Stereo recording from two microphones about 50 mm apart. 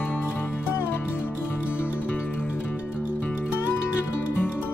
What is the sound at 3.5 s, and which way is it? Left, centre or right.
Music, left.